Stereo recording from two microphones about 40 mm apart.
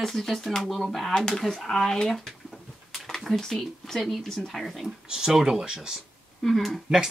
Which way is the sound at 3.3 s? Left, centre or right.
Centre.